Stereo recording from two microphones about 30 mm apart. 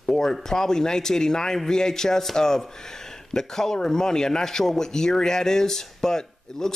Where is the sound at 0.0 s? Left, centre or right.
Centre.